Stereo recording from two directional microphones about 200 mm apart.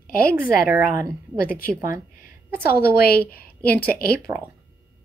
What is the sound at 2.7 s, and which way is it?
A woman's voice, 50° left (ahead or behind).